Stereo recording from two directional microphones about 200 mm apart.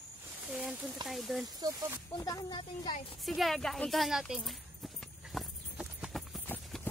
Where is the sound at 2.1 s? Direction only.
20° left (ahead or behind).